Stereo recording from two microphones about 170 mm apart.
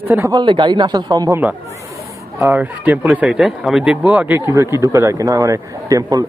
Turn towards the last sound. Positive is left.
turn(degrees=-20)  # may be behind; listen again after turning